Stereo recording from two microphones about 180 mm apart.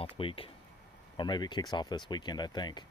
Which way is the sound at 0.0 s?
30° left (ahead or behind).